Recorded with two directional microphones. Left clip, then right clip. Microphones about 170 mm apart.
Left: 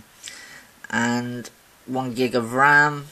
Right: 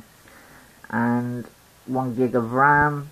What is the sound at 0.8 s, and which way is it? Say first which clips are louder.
Speech: left 1 dB; 25° left (ahead or behind).